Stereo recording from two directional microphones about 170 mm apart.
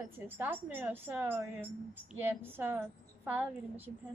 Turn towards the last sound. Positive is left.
turn(degrees=-10)  # may be behind; listen again after turning